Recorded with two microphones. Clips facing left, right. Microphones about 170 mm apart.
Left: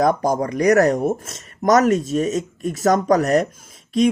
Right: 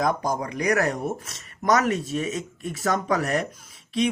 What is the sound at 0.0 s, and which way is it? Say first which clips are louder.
Speech: left 7 dB; 40° left (ahead or behind).